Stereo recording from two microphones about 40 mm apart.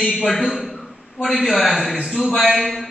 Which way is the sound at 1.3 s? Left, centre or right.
Centre.